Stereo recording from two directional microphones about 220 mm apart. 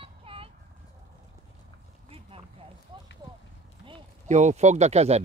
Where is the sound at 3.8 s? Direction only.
30° right (ahead or behind).